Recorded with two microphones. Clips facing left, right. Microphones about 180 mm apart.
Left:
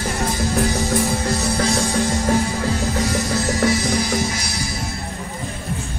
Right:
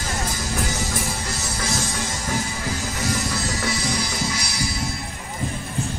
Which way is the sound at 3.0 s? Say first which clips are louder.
Left 5 dB; 60° left (ahead or behind).